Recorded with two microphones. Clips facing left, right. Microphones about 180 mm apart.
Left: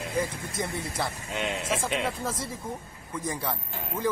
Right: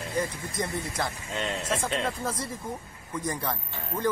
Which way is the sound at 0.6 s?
Centre (ahead or behind).